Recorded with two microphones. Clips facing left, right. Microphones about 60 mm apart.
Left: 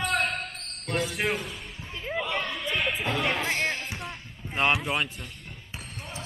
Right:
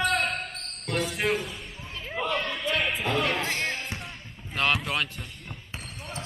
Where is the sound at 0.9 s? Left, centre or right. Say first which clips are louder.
Right 1 dB; centre.